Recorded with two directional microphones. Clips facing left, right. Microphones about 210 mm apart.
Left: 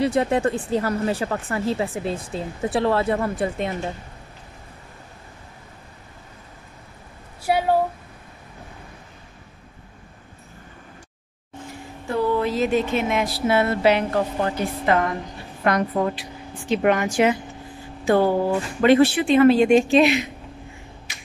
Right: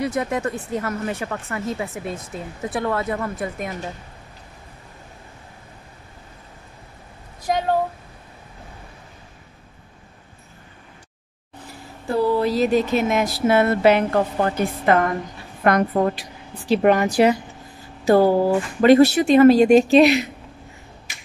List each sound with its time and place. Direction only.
0.0 s speech: 30° left (ahead or behind)
7.4 s a sound: 10° left (ahead or behind)
11.6 s a woman's voice: 35° right (ahead or behind); by 16.3 s 50° right (ahead or behind)
16.5 s speech: 35° right (ahead or behind)